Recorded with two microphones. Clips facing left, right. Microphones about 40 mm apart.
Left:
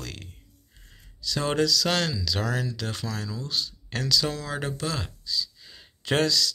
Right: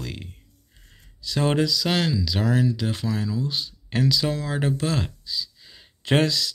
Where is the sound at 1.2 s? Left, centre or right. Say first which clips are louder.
Right 3 dB; right.